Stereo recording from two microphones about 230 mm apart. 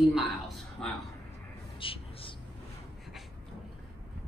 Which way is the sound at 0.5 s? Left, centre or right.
Centre.